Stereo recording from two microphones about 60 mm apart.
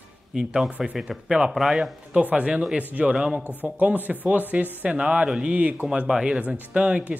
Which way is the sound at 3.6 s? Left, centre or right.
Right.